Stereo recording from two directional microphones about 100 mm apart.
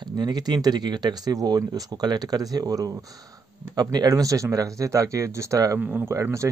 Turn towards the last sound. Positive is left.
turn(degrees=-30)  # may be behind; listen again after turning